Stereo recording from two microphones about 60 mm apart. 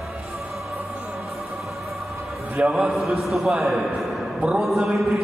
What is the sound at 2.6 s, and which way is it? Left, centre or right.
Speech, right.